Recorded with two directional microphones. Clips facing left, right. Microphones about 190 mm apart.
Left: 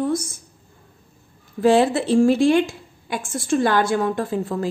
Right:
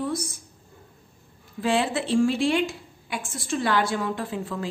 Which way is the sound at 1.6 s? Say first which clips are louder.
Left 8 dB; 40° left (ahead or behind).